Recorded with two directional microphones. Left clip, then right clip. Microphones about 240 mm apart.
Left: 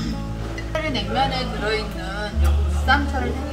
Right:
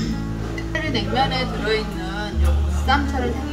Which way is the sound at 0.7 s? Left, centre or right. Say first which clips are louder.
Even; centre.